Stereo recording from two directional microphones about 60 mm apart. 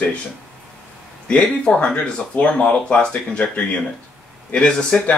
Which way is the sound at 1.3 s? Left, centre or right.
Centre.